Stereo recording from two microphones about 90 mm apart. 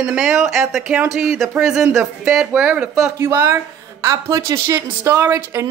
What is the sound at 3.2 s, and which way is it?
A woman's voice, 30° right (ahead or behind).